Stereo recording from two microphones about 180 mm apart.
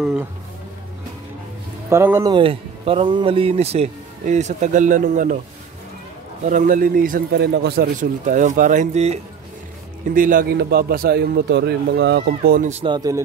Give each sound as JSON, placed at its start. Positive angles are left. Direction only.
{"t": 0.0, "sound": "speech", "side_deg": -5}
{"t": 1.9, "sound": "speech", "side_deg": -15}
{"t": 2.3, "sound": "speech", "side_deg": -30}
{"t": 6.4, "sound": "a man's voice", "side_deg": -45}
{"t": 10.1, "sound": "a man's voice", "side_deg": -50}
{"t": 12.8, "sound": "a man's voice", "side_deg": -20}